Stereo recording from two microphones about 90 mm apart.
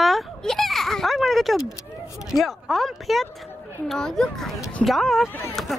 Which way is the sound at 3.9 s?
5° left (ahead or behind).